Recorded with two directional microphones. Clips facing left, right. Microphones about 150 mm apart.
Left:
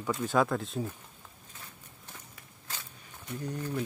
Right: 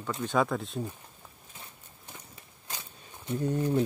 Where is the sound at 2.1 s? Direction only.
20° right (ahead or behind).